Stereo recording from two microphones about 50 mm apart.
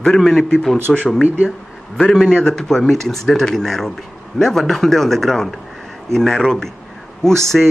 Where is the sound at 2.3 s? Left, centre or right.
Centre.